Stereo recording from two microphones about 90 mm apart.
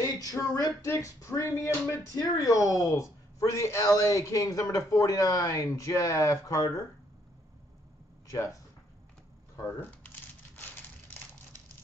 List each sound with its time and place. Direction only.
0.0 s a sound: 40° left (ahead or behind)
0.8 s speech: 35° left (ahead or behind)
9.8 s crumpling: 20° left (ahead or behind)